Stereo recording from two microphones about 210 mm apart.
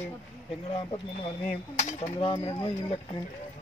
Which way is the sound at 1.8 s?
35° left (ahead or behind).